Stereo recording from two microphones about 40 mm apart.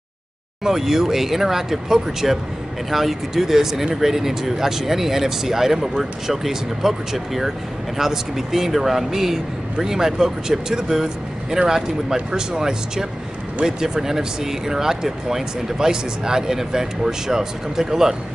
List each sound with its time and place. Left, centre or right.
0.7 s speech: centre